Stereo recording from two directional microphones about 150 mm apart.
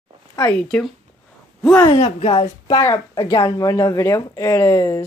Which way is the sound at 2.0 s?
45° left (ahead or behind).